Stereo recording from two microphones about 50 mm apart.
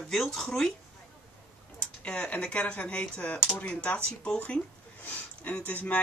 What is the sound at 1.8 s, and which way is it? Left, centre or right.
Speech, left.